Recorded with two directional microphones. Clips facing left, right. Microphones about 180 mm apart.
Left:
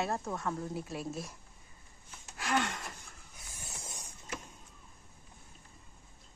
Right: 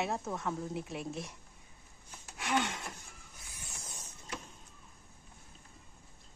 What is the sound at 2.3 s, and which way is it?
Speech, centre (ahead or behind).